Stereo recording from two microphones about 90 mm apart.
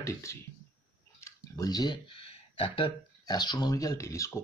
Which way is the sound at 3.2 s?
50° left (ahead or behind).